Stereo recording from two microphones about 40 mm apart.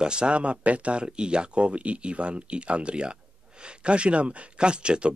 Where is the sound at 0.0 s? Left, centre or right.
Right.